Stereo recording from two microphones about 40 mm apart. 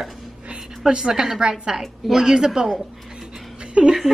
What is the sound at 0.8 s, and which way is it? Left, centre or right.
Speech, centre.